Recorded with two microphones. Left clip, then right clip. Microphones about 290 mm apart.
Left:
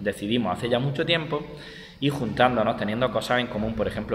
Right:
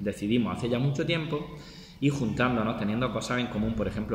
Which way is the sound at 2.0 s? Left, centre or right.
Left.